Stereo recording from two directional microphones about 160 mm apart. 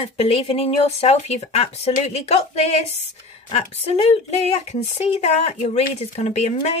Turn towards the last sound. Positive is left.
turn(degrees=45)  # may be behind; listen again after turning